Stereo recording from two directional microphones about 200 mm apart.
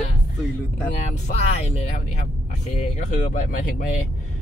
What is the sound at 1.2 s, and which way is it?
Speech, 35° left (ahead or behind).